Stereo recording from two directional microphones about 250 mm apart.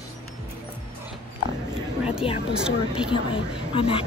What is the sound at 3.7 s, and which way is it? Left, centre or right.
Speech, left.